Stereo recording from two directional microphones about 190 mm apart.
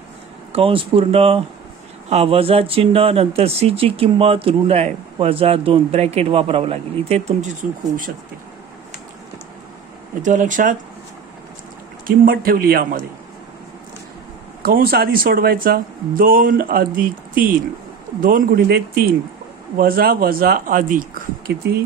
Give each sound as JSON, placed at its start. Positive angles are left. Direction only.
{"t": 0.5, "sound": "speech", "side_deg": -30}
{"t": 10.2, "sound": "speech", "side_deg": -40}
{"t": 12.3, "sound": "speech", "side_deg": -50}
{"t": 14.6, "sound": "speech", "side_deg": -50}
{"t": 19.8, "sound": "speech", "side_deg": -50}